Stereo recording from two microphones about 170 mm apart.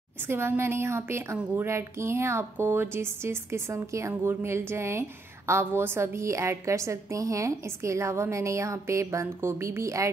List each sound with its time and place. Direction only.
0.3 s speech: 15° right (ahead or behind)